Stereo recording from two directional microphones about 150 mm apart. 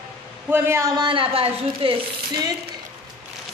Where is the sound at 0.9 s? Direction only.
35° right (ahead or behind).